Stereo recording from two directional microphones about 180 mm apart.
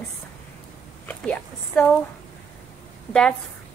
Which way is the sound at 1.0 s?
5° left (ahead or behind).